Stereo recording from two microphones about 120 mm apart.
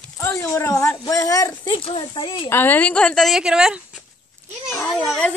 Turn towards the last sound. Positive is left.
turn(degrees=-5)  # may be behind; listen again after turning